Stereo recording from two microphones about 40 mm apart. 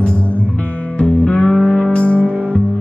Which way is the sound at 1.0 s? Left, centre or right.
Left.